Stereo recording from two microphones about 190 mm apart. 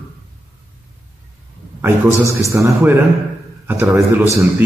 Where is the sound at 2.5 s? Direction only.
15° right (ahead or behind).